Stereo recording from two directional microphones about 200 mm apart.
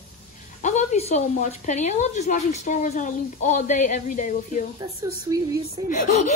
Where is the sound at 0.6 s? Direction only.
35° left (ahead or behind).